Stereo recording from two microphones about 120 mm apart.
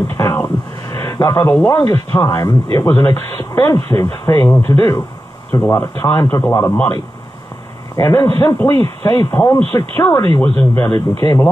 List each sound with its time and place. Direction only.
0.1 s a sound: 25° left (ahead or behind)
1.7 s speech: 25° left (ahead or behind)
7.9 s speech: 25° left (ahead or behind)
10.4 s speech: 10° left (ahead or behind)